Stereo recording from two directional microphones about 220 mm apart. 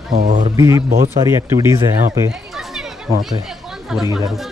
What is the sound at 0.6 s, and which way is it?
Speech, 15° right (ahead or behind).